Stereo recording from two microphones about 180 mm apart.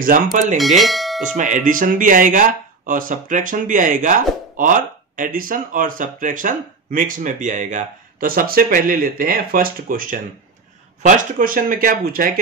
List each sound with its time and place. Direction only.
0.0 s speech: 50° right (ahead or behind)
0.6 s speech: centre (ahead or behind)
1.2 s speech: 45° right (ahead or behind)